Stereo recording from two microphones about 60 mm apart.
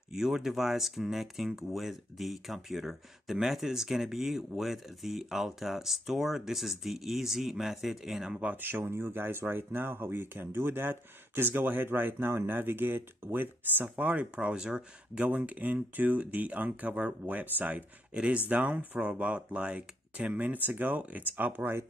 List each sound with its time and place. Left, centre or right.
0.1 s speech: centre
8.5 s speech: right